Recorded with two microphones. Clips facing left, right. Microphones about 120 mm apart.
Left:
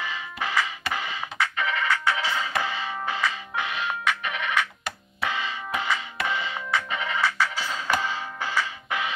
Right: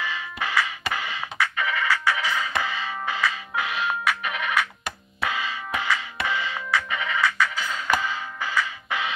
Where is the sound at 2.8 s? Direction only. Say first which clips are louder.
Right 1 dB; centre (ahead or behind).